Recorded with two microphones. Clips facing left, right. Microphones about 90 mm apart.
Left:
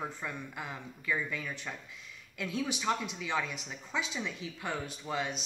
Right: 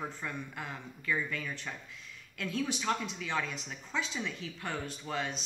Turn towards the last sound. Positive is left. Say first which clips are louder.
# left 1 dB
turn(degrees=10)  # may be behind; listen again after turning